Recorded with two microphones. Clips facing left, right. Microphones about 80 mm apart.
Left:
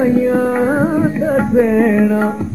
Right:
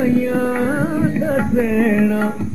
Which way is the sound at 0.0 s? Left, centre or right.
Centre.